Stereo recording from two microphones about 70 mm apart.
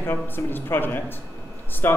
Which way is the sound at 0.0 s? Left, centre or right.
Left.